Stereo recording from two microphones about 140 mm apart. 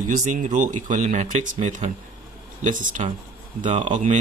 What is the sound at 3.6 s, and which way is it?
Speech, 55° right (ahead or behind).